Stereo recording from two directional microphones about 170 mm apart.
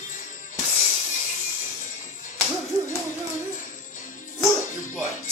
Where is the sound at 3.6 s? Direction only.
50° left (ahead or behind).